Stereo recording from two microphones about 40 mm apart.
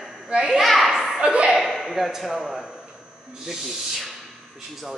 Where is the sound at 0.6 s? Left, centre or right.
Centre.